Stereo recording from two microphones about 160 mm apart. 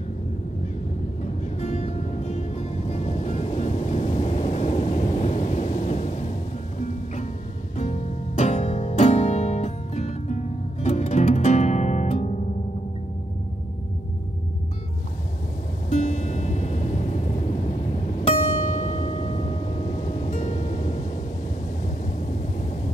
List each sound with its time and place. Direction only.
1.6 s music: 40° left (ahead or behind)
7.7 s music: 45° left (ahead or behind)
15.9 s music: 50° left (ahead or behind)
21.8 s vehicle: 50° left (ahead or behind)